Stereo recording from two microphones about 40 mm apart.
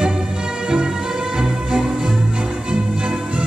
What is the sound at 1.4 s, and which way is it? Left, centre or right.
Music, centre.